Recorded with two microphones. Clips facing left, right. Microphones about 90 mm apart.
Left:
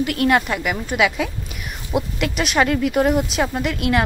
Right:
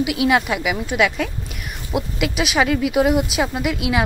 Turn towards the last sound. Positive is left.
turn(degrees=-5)  # may be behind; listen again after turning